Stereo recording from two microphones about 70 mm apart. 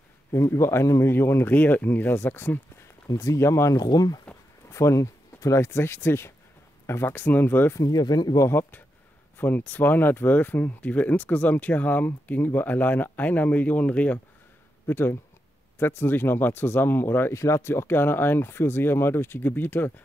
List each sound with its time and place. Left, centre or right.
0.3 s speech: left
3.1 s speech: left
3.3 s speech: left
3.7 s speech: left
4.6 s speech: left
7.8 s speech: left
8.4 s speech: left
14.9 s speech: left
17.3 s speech: left